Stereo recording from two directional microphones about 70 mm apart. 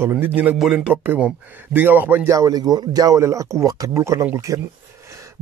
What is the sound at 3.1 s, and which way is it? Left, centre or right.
Speech, right.